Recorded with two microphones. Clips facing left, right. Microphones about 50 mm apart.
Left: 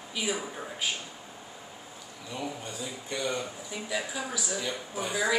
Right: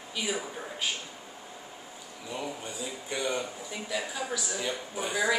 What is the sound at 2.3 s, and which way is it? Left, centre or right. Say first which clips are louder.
Speech: even; centre.